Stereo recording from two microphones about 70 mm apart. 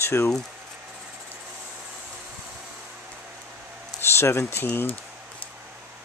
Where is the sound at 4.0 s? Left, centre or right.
Left.